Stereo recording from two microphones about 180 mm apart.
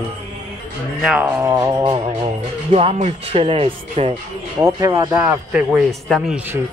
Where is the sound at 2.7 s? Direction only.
35° right (ahead or behind).